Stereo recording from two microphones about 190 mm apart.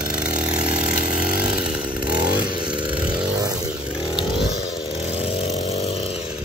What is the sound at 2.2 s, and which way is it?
Vehicle, 25° right (ahead or behind).